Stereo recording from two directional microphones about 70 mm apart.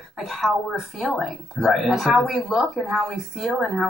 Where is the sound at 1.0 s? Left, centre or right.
Centre.